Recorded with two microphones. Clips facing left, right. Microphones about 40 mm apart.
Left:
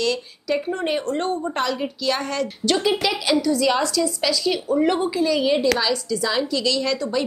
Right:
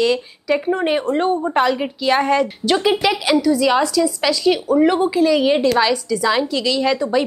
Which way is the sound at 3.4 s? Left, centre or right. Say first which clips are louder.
Right 4 dB; centre.